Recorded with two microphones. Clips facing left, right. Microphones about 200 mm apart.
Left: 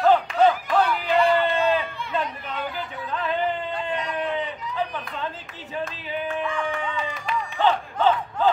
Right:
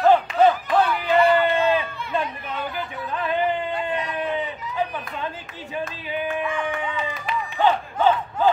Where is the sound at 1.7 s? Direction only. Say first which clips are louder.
Right 1 dB; 10° right (ahead or behind).